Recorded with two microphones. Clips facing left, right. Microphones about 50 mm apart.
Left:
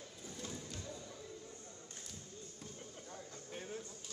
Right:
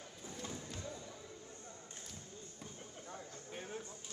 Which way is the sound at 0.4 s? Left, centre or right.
Right.